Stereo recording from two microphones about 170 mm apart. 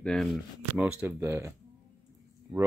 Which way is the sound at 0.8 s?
10° right (ahead or behind).